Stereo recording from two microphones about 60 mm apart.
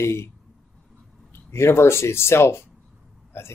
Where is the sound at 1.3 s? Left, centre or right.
Left.